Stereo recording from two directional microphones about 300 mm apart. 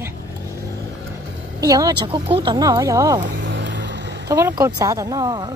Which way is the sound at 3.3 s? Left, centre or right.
Right.